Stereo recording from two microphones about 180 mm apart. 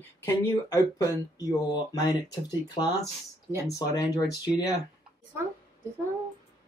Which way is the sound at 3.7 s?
20° left (ahead or behind).